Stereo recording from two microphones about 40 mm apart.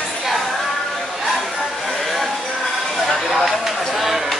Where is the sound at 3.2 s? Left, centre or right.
Centre.